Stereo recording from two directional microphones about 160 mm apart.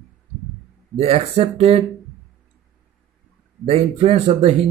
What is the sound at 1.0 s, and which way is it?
Speech, 35° right (ahead or behind).